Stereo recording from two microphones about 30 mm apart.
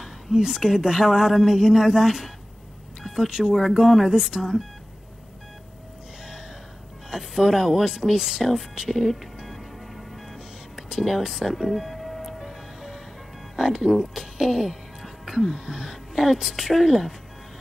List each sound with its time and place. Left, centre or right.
0.4 s speech: centre
3.6 s speech: centre
7.1 s speech: centre
9.5 s music: centre
10.8 s speech: centre
11.5 s music: centre
13.9 s a woman's voice: right
14.2 s speech: centre